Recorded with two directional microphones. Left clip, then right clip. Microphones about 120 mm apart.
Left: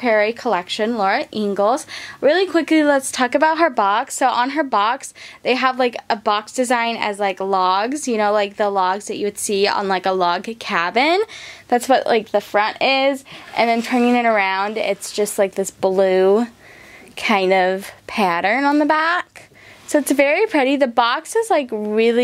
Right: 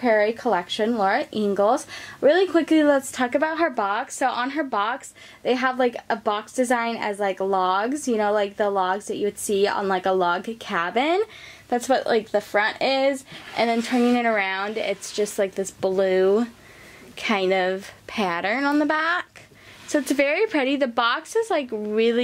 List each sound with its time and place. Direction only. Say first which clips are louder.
0.0 s speech: left 3 dB; 10° left (ahead or behind)
3.2 s a woman's voice: left 7 dB; 30° left (ahead or behind)
5.4 s speech: left 4 dB; 15° left (ahead or behind)